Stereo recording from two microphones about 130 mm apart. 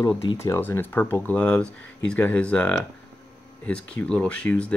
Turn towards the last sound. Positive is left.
turn(degrees=10)  # may be behind; listen again after turning